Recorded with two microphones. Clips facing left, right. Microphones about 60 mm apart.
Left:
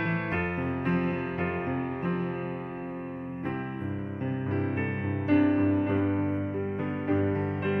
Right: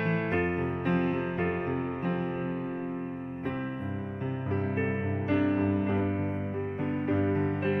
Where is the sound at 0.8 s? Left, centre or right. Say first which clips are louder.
Right 1 dB; left.